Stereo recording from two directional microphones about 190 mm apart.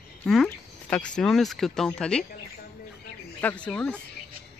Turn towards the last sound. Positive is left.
turn(degrees=5)  # may be behind; listen again after turning